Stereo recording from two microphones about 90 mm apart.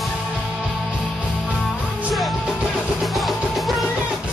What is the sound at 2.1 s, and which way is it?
Music, centre (ahead or behind).